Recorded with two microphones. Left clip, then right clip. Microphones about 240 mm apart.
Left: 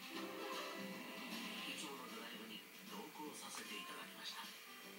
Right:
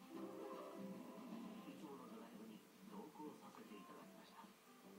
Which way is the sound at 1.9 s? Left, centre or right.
Centre.